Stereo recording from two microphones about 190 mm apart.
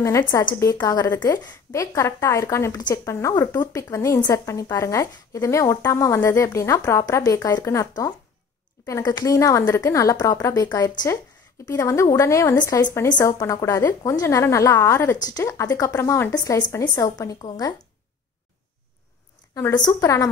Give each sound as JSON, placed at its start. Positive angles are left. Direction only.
{"t": 0.0, "sound": "a woman's voice", "side_deg": 15}
{"t": 19.5, "sound": "a woman's voice", "side_deg": 20}